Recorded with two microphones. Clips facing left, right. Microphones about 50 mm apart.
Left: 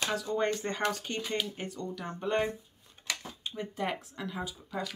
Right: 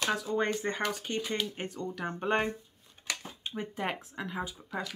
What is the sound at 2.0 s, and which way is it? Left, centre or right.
Speech, right.